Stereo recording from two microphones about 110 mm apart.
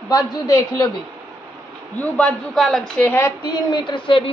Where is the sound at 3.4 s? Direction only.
40° left (ahead or behind).